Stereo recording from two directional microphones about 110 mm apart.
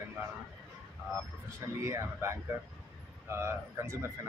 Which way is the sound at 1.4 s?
25° right (ahead or behind).